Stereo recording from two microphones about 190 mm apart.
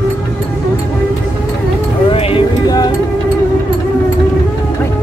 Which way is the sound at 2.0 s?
30° left (ahead or behind).